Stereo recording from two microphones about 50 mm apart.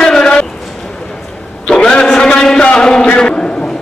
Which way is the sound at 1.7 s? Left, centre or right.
Centre.